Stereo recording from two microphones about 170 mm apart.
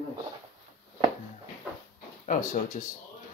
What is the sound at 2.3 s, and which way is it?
Speech, 50° left (ahead or behind).